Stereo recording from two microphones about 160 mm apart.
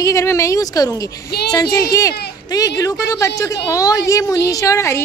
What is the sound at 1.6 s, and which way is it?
Speech, 80° left.